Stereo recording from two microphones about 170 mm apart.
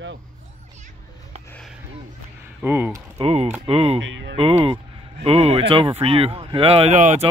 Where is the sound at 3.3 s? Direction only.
40° right (ahead or behind).